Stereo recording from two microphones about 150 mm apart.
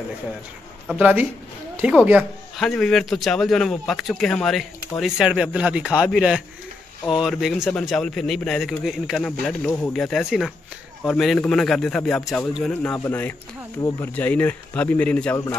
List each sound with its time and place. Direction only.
0.9 s speech: 10° right (ahead or behind)
2.5 s a man's voice: centre (ahead or behind)
5.9 s a man's voice: 10° left (ahead or behind)
6.1 s a man's voice: 5° right (ahead or behind); by 9.9 s 10° left (ahead or behind)
9.9 s a man's voice: centre (ahead or behind)